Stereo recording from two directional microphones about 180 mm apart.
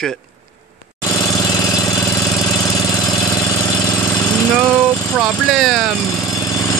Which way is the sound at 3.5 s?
15° left (ahead or behind).